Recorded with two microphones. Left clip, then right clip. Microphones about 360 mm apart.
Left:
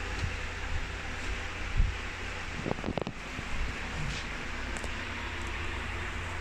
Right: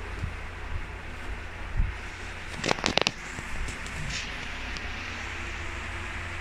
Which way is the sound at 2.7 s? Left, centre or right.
Right.